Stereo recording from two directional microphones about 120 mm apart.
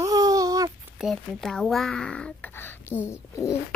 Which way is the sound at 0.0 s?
30° right (ahead or behind).